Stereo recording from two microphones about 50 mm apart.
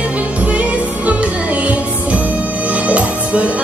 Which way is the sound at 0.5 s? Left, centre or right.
Right.